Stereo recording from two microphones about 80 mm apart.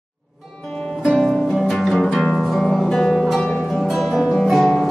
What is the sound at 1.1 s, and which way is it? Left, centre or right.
Music, centre.